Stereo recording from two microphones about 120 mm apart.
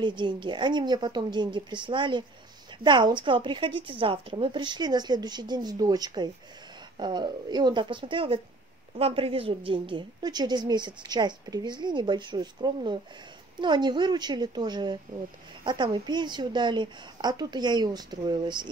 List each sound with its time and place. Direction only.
0.0 s a woman's voice: 40° right (ahead or behind)